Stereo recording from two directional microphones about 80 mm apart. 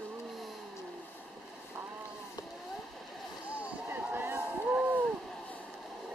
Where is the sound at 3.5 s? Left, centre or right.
Right.